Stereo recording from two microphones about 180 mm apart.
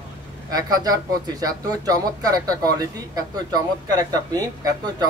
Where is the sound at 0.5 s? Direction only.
20° right (ahead or behind).